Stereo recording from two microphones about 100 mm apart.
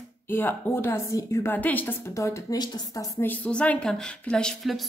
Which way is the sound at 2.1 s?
30° left (ahead or behind).